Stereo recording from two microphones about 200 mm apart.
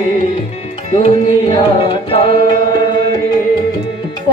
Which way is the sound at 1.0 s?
30° left (ahead or behind).